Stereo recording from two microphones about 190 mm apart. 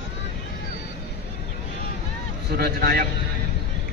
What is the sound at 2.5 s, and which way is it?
Speech, 55° right (ahead or behind).